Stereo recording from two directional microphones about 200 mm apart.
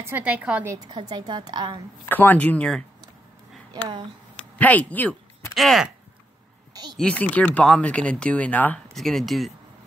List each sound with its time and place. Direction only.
0.0 s a woman's voice: 10° right (ahead or behind)
0.7 s a woman's voice: 20° right (ahead or behind)
2.0 s speech: 10° left (ahead or behind)
4.6 s speech: 10° left (ahead or behind)
6.7 s a sound: 20° right (ahead or behind)
7.0 s speech: 5° left (ahead or behind)